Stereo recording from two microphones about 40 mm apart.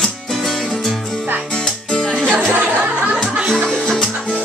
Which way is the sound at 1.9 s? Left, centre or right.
Centre.